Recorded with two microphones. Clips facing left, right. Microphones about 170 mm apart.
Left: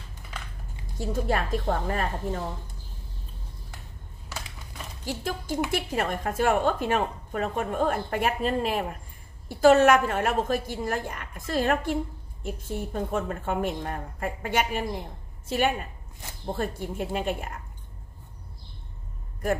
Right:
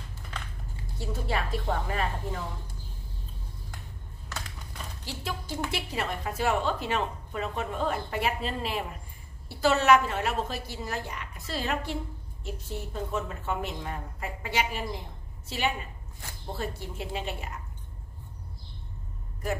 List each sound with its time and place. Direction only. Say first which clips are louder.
0.9 s a woman's voice: left 5 dB; 45° left (ahead or behind)
5.0 s a woman's voice: left 6 dB; 50° left (ahead or behind)